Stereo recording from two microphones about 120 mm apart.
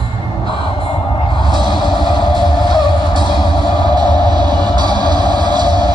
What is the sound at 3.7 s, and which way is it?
Music, 35° right (ahead or behind).